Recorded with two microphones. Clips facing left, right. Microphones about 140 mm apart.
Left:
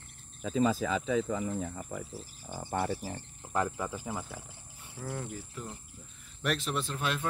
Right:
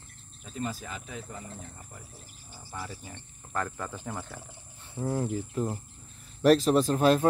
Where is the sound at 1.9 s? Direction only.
90° left.